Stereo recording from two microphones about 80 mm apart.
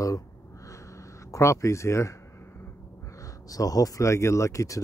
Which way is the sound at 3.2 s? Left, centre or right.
Left.